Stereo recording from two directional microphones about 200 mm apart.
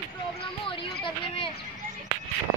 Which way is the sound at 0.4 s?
25° left (ahead or behind).